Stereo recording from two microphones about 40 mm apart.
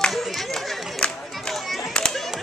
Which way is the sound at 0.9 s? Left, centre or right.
Left.